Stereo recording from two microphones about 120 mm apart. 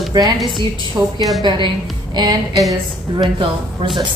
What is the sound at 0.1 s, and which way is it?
Speech, 35° right (ahead or behind).